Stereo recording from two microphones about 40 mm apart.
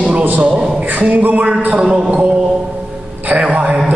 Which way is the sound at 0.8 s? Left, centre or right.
Right.